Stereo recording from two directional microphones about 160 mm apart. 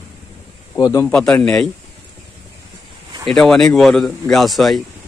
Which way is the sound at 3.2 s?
5° left (ahead or behind).